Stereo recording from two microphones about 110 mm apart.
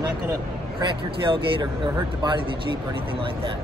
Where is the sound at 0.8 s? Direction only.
50° right (ahead or behind).